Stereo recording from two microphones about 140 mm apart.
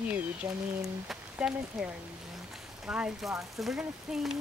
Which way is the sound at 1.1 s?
5° right (ahead or behind).